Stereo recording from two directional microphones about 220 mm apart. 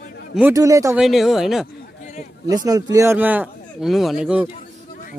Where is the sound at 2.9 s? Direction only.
10° right (ahead or behind).